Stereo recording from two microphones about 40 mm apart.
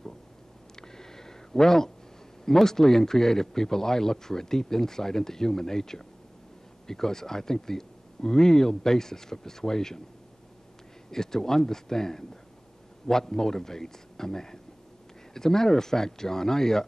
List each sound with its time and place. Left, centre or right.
0.7 s a sound: centre
2.4 s speech: centre
11.1 s speech: centre